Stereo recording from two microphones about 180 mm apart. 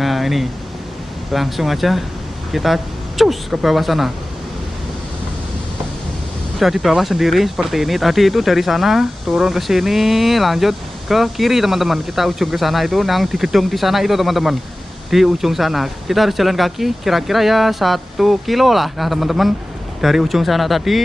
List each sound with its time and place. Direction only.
0.0 s a sound: centre (ahead or behind)
1.3 s speech: centre (ahead or behind)
6.6 s speech: centre (ahead or behind)